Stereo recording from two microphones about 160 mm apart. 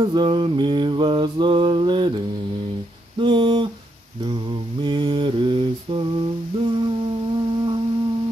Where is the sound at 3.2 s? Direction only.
30° right (ahead or behind).